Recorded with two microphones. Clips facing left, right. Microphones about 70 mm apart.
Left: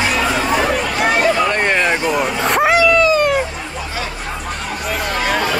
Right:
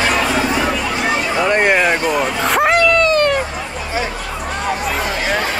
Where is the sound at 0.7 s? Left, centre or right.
Left.